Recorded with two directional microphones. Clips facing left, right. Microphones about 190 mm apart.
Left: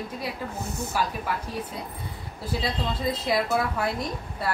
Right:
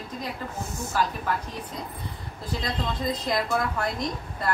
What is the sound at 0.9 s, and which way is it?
Speech, 10° left (ahead or behind).